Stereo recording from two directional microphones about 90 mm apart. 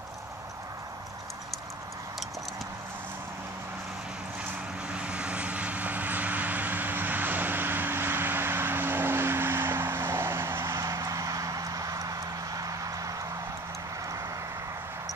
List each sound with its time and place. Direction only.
4.9 s vehicle: 15° right (ahead or behind); by 13.1 s 40° right (ahead or behind)